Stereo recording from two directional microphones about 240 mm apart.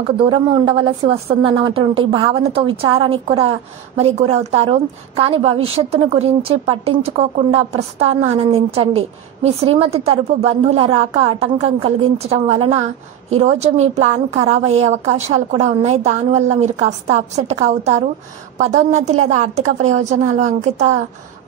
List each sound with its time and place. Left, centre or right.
0.2 s a woman's voice: right